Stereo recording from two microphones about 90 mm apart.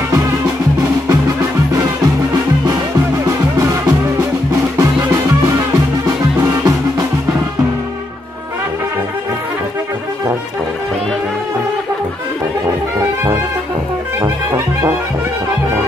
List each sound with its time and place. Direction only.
3.3 s music: 35° right (ahead or behind)
6.4 s music: 40° right (ahead or behind)
12.6 s music: 30° right (ahead or behind)